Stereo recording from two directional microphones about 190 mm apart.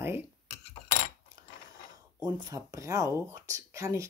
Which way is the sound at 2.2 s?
20° right (ahead or behind).